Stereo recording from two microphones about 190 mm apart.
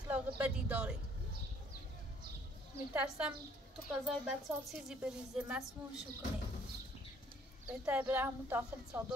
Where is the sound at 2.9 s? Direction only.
10° right (ahead or behind).